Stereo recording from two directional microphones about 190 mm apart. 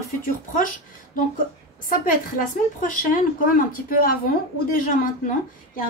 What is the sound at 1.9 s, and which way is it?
A woman's voice, 45° left (ahead or behind).